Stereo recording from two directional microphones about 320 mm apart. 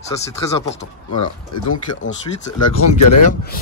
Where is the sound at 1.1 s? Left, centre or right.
Left.